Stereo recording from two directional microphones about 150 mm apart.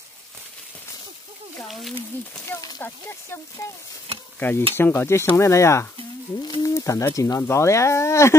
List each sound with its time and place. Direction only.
1.6 s speech: centre (ahead or behind)
2.4 s speech: 15° left (ahead or behind)
4.4 s stir: 10° left (ahead or behind)
4.7 s speech: 15° left (ahead or behind)